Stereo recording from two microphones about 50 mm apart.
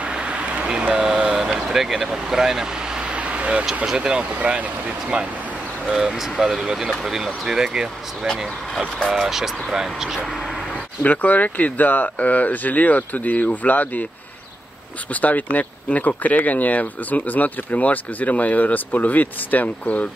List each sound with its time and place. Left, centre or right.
0.0 s vehicle: right
3.8 s speech: centre
5.9 s speech: centre
11.0 s speech: left
15.1 s speech: left